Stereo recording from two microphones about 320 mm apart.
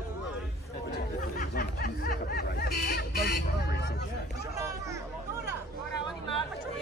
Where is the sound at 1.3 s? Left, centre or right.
Left.